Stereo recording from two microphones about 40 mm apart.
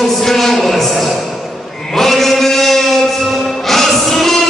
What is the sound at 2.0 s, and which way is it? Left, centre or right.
Chant, centre.